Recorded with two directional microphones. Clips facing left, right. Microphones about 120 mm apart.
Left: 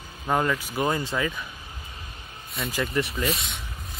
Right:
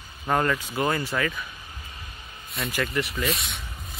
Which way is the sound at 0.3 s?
10° left (ahead or behind).